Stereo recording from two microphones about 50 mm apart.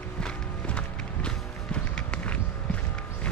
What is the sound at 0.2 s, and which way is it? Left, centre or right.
Music, left.